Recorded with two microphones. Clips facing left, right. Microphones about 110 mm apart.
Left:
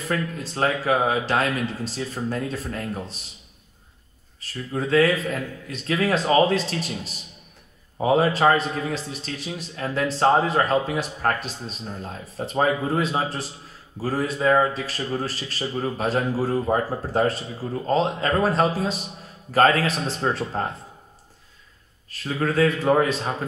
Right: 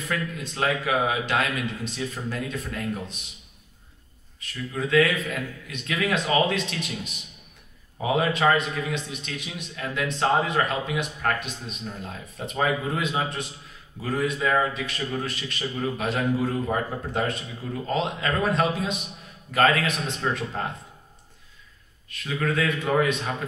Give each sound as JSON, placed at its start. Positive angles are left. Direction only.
{"t": 0.0, "sound": "a man's voice", "side_deg": 35}
{"t": 4.4, "sound": "a man's voice", "side_deg": 35}
{"t": 22.1, "sound": "a man's voice", "side_deg": 35}